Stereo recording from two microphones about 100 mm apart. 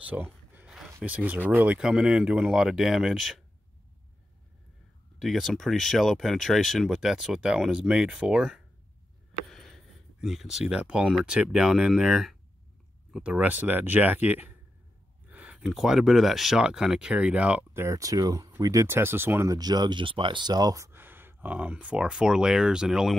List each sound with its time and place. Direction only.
0.0 s a sound: 15° right (ahead or behind)
1.0 s speech: 15° right (ahead or behind)
1.8 s speech: 5° right (ahead or behind)
5.2 s speech: centre (ahead or behind)
9.5 s a sound: centre (ahead or behind)
11.2 s speech: 10° right (ahead or behind)
15.2 s a sound: 15° right (ahead or behind)
15.7 s speech: 5° right (ahead or behind)
17.7 s speech: 30° right (ahead or behind)
18.9 s speech: 25° right (ahead or behind)
19.5 s speech: 45° right (ahead or behind)
20.9 s speech: 20° right (ahead or behind)